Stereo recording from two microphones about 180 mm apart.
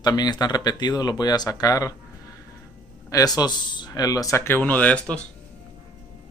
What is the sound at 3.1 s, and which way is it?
Speech, 20° left (ahead or behind).